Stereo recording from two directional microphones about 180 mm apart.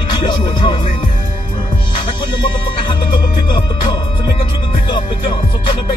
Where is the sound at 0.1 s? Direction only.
25° left (ahead or behind).